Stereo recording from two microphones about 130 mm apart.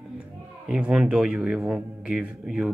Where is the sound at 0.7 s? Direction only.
5° right (ahead or behind).